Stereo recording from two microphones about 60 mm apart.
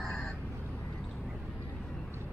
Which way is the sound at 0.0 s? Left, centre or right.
Centre.